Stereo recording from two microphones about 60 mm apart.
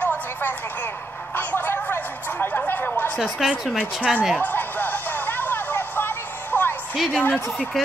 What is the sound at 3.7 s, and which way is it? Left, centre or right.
Speech, right.